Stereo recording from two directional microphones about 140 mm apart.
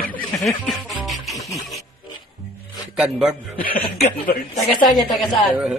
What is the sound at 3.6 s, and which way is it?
Speech, 90° left.